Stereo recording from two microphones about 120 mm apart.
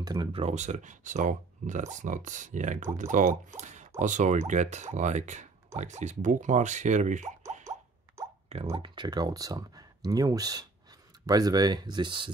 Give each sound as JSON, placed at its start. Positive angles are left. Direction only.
{"t": 0.0, "sound": "speech", "side_deg": -35}
{"t": 0.3, "sound": "speech", "side_deg": -60}
{"t": 5.8, "sound": "speech", "side_deg": -75}
{"t": 8.7, "sound": "speech", "side_deg": -40}